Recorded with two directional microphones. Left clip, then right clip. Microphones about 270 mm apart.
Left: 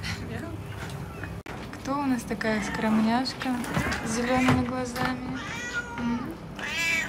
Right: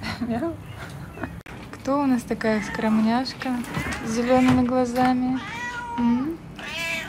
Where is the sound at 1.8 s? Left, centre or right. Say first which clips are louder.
Right 6 dB; centre.